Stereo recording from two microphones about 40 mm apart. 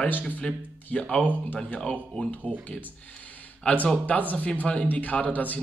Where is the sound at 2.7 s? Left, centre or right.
Left.